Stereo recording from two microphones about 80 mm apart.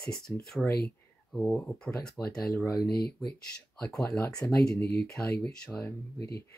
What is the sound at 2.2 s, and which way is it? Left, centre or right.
Speech, left.